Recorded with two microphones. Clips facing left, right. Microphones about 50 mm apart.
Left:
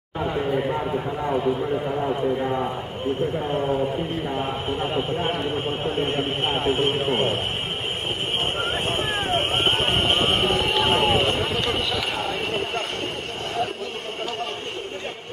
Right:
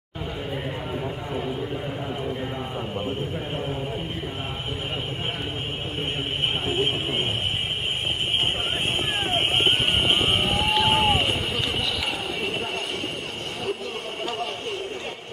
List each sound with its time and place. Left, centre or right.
2.4 s a man's voice: left
5.9 s a man's voice: centre
9.3 s run: centre